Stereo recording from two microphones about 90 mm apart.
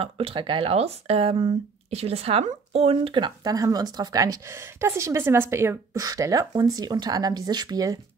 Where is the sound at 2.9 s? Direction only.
75° right (ahead or behind); by 3.5 s 60° right (ahead or behind).